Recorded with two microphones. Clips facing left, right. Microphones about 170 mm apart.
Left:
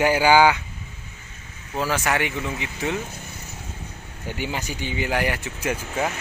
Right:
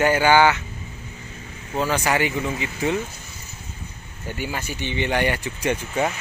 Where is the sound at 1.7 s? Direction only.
Centre (ahead or behind).